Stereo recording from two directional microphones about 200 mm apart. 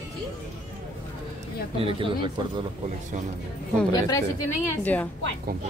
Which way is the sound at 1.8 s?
25° right (ahead or behind).